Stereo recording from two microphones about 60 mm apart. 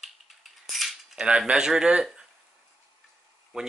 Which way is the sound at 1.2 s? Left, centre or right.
Centre.